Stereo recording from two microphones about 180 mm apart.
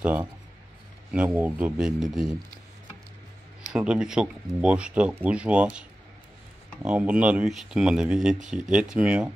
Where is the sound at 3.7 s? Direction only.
5° right (ahead or behind).